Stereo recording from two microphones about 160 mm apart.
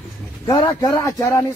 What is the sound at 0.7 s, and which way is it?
Speech, 15° left (ahead or behind).